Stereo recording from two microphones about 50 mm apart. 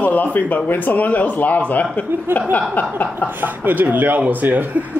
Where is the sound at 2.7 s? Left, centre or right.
Left.